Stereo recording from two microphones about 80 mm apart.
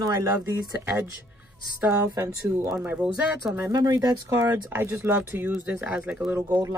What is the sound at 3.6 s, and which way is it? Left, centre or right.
Speech, right.